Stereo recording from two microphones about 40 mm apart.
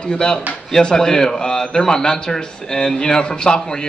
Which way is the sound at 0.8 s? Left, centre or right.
Centre.